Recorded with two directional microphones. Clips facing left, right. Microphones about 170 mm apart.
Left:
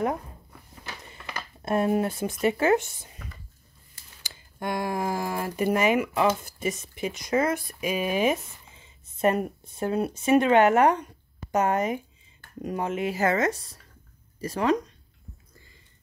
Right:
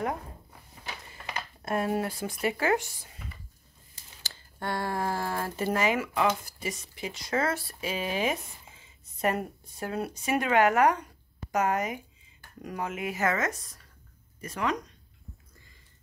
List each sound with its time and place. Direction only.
1.6 s speech: 25° left (ahead or behind)
4.2 s speech: 15° left (ahead or behind); by 14.8 s 35° left (ahead or behind)